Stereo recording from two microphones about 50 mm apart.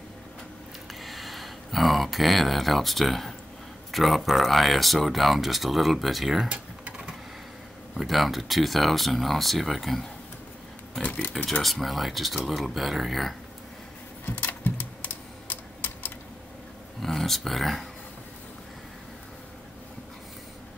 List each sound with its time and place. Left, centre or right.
1.0 s speech: centre
6.5 s typing: centre
7.9 s speech: centre
11.1 s a sound: left
11.6 s speech: centre
14.2 s typing: left
17.0 s speech: centre